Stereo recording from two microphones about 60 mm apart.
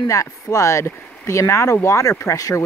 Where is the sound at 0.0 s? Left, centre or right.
Left.